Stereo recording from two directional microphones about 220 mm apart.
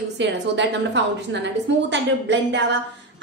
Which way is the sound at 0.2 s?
55° right (ahead or behind).